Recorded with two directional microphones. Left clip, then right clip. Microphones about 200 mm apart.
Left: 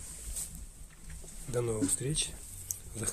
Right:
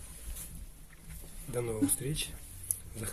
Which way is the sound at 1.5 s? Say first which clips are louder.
Left 1 dB; 10° left (ahead or behind).